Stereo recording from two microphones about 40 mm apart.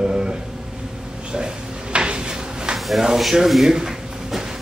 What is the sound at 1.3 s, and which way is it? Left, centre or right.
Drawer open or close, right.